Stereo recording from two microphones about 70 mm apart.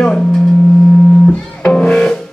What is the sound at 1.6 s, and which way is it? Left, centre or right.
Music, centre.